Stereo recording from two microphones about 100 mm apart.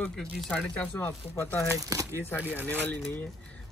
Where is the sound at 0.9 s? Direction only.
25° left (ahead or behind).